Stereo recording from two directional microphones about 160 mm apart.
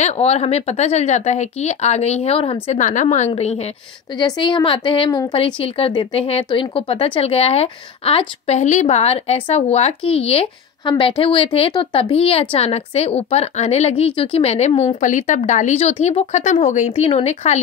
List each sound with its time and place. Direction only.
0.0 s a woman's voice: 40° left (ahead or behind)
4.2 s speech: 30° left (ahead or behind)
15.0 s a woman's voice: 50° left (ahead or behind)